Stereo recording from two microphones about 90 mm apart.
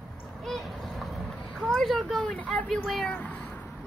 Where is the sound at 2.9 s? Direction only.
10° left (ahead or behind).